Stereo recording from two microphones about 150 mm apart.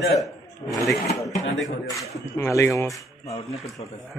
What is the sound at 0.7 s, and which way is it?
Speech, 20° left (ahead or behind).